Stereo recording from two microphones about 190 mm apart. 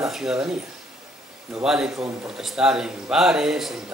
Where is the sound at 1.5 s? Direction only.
5° right (ahead or behind).